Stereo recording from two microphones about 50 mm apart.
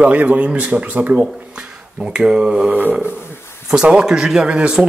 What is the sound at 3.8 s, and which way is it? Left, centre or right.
Speech, centre.